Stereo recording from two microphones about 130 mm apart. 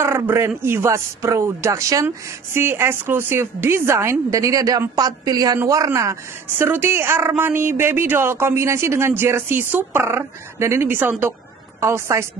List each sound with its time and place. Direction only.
0.0 s a man's voice: 20° right (ahead or behind)
6.6 s speech: 15° right (ahead or behind)